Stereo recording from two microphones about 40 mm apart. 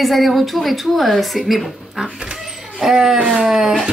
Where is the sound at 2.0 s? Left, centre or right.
Centre.